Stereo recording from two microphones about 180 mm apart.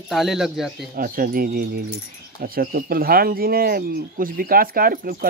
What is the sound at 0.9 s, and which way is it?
Speech, 50° right (ahead or behind).